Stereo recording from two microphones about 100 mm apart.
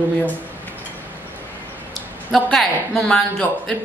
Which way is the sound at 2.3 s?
5° left (ahead or behind).